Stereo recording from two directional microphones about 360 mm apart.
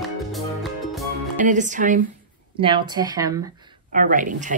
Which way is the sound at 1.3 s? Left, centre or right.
Right.